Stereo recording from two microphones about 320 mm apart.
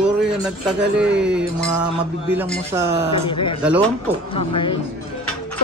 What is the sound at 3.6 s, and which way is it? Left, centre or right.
Speech, centre.